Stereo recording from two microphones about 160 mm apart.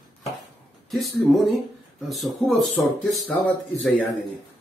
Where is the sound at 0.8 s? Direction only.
Centre (ahead or behind).